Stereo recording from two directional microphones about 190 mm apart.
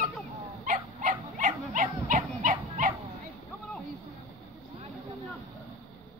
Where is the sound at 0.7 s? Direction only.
40° right (ahead or behind).